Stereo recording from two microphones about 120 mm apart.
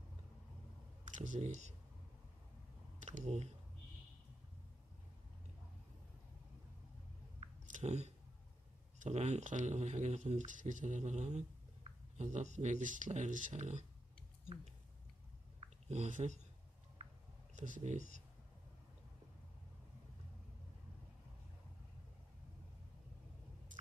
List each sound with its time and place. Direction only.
1.0 s speech: 90° right
3.1 s speech: 80° right
7.7 s speech: 70° right (ahead or behind)
15.9 s speech: 80° right
17.6 s speech: 90° right